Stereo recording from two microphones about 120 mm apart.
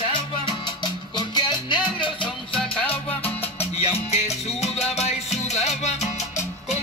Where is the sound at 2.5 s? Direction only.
10° left (ahead or behind).